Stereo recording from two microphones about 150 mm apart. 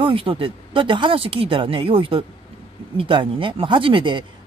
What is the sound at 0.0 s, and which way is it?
Speech, 35° right (ahead or behind).